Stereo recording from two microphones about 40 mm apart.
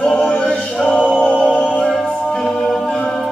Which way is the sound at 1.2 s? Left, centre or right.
Left.